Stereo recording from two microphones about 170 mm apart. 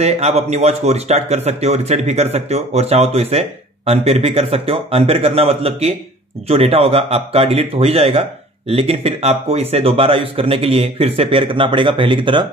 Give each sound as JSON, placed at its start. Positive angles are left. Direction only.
{"t": 0.0, "sound": "speech", "side_deg": -40}